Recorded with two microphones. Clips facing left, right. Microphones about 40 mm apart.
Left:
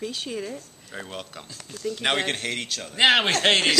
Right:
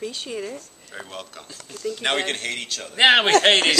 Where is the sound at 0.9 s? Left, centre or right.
Centre.